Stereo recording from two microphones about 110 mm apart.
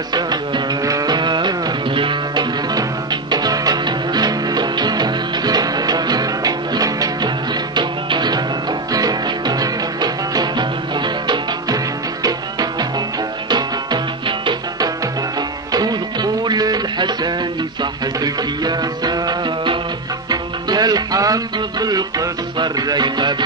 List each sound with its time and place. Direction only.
0.8 s music: 35° right (ahead or behind)
15.7 s music: 40° right (ahead or behind)